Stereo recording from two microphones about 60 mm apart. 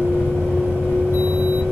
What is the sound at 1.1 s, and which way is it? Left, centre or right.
Vehicle, right.